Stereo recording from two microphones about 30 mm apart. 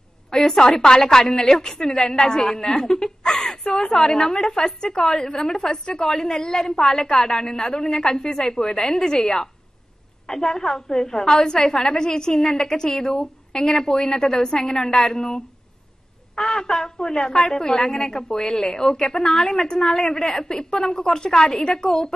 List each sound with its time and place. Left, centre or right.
0.3 s a woman's voice: left